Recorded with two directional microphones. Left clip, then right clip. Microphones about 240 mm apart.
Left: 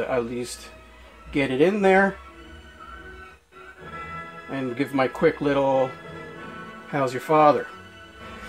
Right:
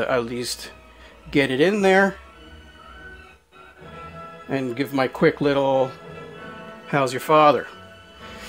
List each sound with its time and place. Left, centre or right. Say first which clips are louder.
0.0 s speech: right 3 dB; right
4.5 s speech: right 3 dB; right
6.9 s speech: right 3 dB; right